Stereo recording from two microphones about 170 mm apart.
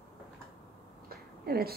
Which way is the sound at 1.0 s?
65° right (ahead or behind).